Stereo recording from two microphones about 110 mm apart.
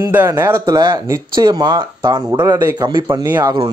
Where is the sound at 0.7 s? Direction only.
35° right (ahead or behind).